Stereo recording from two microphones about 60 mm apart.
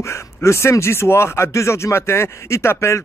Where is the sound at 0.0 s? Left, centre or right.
Left.